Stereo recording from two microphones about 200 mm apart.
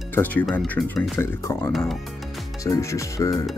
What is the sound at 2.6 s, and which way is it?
Speech, 15° left (ahead or behind).